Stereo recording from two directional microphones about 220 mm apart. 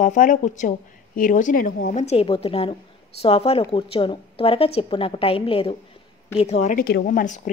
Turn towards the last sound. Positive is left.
turn(degrees=35)  # may be behind; listen again after turning